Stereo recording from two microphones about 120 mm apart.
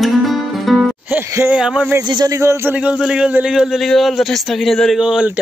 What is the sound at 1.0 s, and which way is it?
Music, 20° right (ahead or behind).